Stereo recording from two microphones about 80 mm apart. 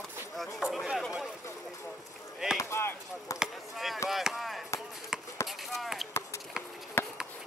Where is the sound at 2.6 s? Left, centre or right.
Left.